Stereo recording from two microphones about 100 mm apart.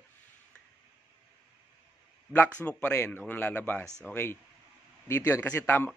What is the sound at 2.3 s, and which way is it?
A man's voice, 15° left (ahead or behind).